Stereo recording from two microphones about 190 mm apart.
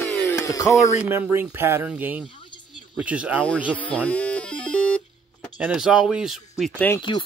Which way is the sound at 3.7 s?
5° left (ahead or behind).